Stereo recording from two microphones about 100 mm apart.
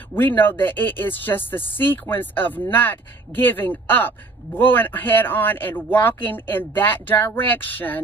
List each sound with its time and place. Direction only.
0.1 s speech: 20° left (ahead or behind)